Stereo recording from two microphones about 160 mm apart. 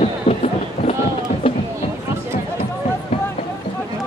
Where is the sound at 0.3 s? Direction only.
35° left (ahead or behind).